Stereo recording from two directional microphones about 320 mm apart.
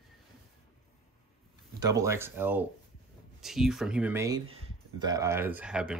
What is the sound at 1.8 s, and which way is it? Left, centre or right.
Speech, centre.